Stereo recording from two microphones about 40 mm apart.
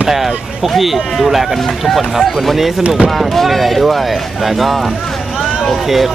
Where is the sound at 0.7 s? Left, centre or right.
Centre.